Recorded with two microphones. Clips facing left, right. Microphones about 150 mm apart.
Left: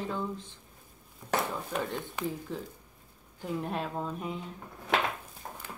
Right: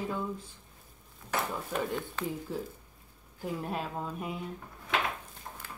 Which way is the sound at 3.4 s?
Centre (ahead or behind).